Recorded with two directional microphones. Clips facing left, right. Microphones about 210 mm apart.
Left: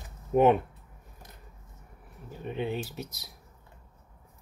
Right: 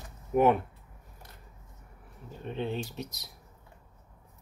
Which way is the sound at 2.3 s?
10° left (ahead or behind).